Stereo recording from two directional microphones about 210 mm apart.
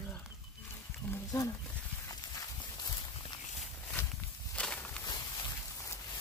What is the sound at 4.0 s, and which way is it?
Walk, 10° left (ahead or behind).